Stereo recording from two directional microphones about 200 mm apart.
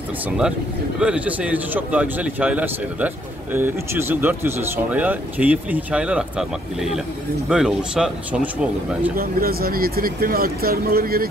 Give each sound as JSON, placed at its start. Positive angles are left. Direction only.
{"t": 0.9, "sound": "speech", "side_deg": -5}
{"t": 9.1, "sound": "speech", "side_deg": -50}